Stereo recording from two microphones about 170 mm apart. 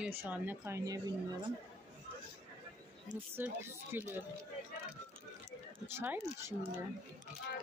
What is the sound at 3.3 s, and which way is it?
Speech, 15° right (ahead or behind).